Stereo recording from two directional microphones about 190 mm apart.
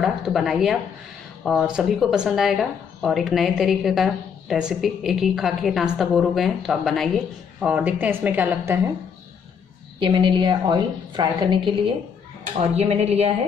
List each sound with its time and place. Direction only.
0.0 s speech: centre (ahead or behind)
9.9 s a woman's voice: 25° right (ahead or behind)